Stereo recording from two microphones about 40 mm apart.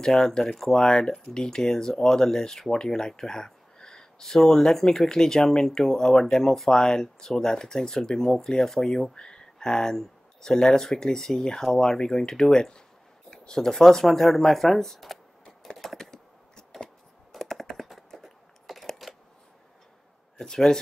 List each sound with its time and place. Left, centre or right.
0.0 s speech: centre
16.0 s a sound: centre
17.3 s typing: centre
20.3 s speech: centre